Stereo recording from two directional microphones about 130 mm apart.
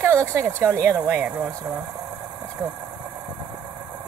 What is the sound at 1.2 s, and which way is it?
Speech, 10° right (ahead or behind).